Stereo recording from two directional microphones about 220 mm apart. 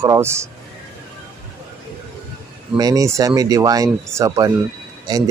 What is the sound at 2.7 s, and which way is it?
Speech, 15° right (ahead or behind).